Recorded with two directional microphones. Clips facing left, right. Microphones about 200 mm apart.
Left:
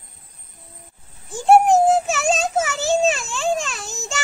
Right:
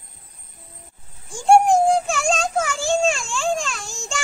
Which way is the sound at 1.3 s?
5° left (ahead or behind).